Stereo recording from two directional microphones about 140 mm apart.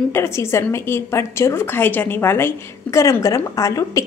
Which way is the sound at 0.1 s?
20° left (ahead or behind).